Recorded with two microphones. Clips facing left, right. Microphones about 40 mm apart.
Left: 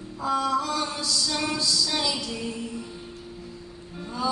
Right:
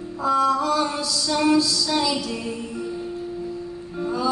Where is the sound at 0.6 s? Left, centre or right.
Centre.